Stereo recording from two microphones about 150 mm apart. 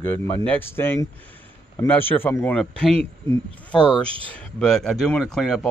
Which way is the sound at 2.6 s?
5° left (ahead or behind).